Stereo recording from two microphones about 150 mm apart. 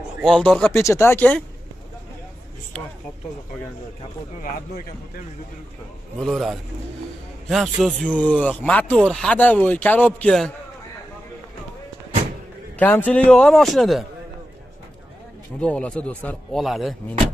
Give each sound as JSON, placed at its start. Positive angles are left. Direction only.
{"t": 0.2, "sound": "a man's voice", "side_deg": 0}
{"t": 0.7, "sound": "speech", "side_deg": 15}
{"t": 6.1, "sound": "a man's voice", "side_deg": 0}
{"t": 12.7, "sound": "speech", "side_deg": 10}
{"t": 15.6, "sound": "speech", "side_deg": 5}